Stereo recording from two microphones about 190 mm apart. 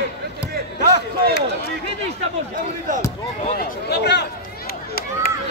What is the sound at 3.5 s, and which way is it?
Speech, 55° left (ahead or behind).